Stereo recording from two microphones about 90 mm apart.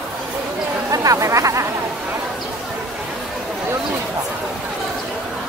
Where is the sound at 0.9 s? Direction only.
35° right (ahead or behind).